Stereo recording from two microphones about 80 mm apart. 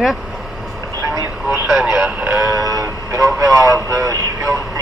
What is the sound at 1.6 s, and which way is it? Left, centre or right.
Radio, centre.